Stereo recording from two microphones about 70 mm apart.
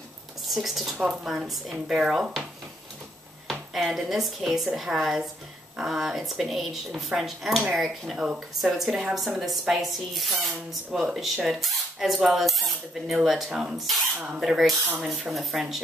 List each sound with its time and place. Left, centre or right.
0.4 s a woman's voice: centre
3.4 s speech: centre
14.1 s speech: centre
14.4 s speech: centre